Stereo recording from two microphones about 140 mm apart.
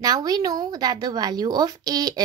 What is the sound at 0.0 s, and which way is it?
A woman's voice, 25° right (ahead or behind).